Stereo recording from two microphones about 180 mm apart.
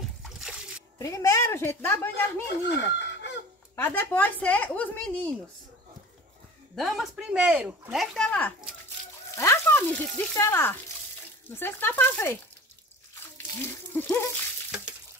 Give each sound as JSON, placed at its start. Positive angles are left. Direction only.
{"t": 0.2, "sound": "slosh", "side_deg": -5}
{"t": 0.9, "sound": "a woman's voice", "side_deg": 20}
{"t": 2.6, "sound": "chicken", "side_deg": 75}
{"t": 3.7, "sound": "speech", "side_deg": 10}
{"t": 6.7, "sound": "speech", "side_deg": 0}
{"t": 13.7, "sound": "speech", "side_deg": 15}